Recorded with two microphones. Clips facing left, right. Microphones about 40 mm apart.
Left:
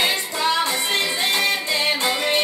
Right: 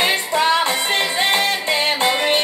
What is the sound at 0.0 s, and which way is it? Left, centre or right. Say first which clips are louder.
Music: right 4 dB; right.